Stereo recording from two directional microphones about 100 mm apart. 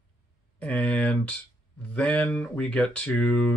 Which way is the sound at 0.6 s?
10° left (ahead or behind).